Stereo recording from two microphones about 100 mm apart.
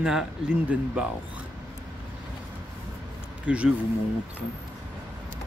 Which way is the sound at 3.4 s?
10° right (ahead or behind).